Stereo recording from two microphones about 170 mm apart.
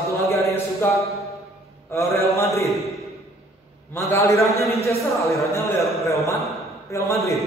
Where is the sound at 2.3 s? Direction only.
15° left (ahead or behind).